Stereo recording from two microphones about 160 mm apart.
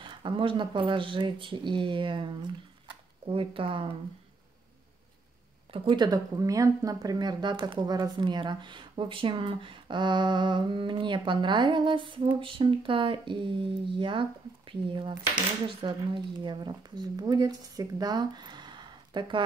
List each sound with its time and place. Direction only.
0.0 s speech: 30° right (ahead or behind)
5.7 s speech: 30° right (ahead or behind)